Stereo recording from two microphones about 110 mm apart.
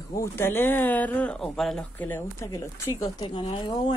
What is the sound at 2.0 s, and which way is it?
Speech, 15° left (ahead or behind).